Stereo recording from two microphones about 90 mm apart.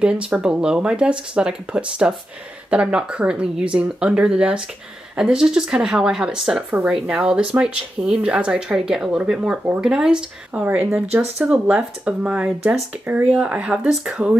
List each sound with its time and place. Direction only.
0.0 s speech: 10° right (ahead or behind)